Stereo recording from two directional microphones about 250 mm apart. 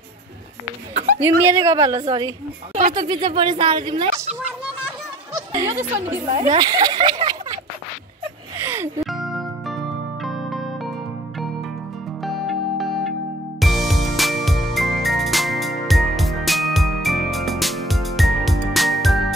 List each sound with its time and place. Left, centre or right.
1.2 s speech: centre
5.3 s honk: centre
6.3 s speech: right
8.5 s music: centre
12.2 s music: centre